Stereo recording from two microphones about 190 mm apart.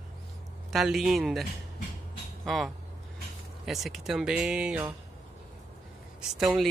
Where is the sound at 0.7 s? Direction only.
Centre (ahead or behind).